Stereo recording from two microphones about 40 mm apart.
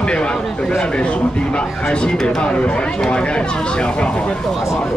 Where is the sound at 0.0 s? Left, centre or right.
Left.